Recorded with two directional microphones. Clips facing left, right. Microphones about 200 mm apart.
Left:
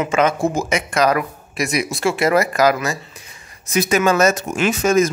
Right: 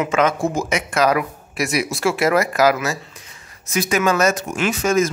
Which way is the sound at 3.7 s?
25° left (ahead or behind).